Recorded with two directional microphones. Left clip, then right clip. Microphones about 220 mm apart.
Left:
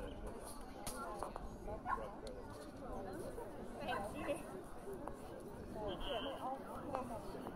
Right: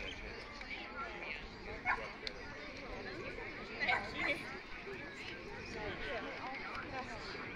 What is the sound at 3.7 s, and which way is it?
Chatter, 30° left (ahead or behind).